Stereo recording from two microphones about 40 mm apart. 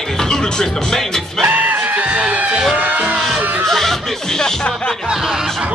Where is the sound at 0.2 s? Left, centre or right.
Centre.